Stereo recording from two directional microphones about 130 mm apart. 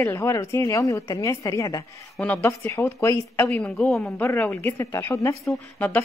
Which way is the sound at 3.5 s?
5° left (ahead or behind).